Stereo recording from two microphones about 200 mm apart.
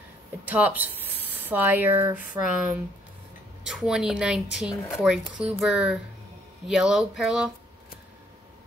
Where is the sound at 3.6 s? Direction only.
5° right (ahead or behind).